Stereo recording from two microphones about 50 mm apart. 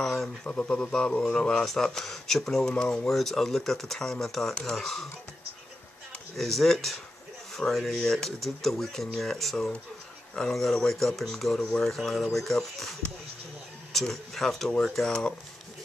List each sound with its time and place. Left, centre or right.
0.0 s a sound: centre
0.4 s speech: left
1.3 s speech: centre
2.7 s speech: left
3.1 s speech: centre
6.3 s speech: centre
13.9 s speech: centre
15.0 s speech: centre